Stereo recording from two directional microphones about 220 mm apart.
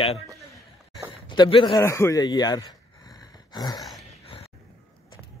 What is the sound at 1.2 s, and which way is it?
A man's voice, 20° left (ahead or behind).